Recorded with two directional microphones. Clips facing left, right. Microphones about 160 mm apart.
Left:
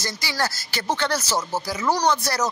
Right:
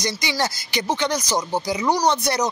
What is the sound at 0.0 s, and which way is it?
Speech, 20° right (ahead or behind).